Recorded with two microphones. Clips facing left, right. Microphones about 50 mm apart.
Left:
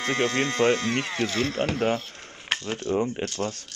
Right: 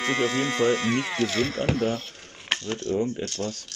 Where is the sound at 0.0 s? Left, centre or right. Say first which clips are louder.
Even; centre.